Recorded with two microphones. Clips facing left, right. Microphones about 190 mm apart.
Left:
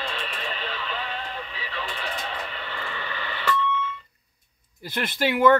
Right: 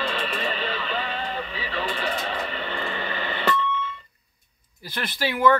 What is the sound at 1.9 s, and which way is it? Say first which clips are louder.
Vehicle: right 5 dB; 75° right (ahead or behind).